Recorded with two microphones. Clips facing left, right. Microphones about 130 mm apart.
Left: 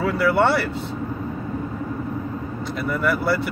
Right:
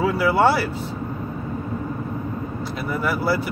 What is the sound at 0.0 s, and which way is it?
Speech, 5° right (ahead or behind).